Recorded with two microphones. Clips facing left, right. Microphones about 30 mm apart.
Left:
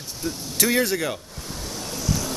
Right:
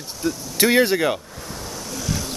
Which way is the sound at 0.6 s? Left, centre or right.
Right.